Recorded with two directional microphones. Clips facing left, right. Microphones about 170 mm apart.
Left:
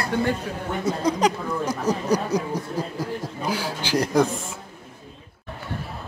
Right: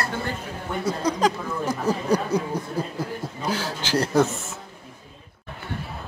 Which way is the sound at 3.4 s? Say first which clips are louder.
Even; 10° left (ahead or behind).